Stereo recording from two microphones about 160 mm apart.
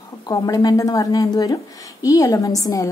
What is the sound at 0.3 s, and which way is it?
A woman's voice, 20° left (ahead or behind).